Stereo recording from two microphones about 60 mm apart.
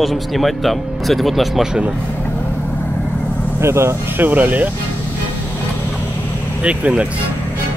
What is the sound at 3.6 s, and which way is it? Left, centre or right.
Speech, right.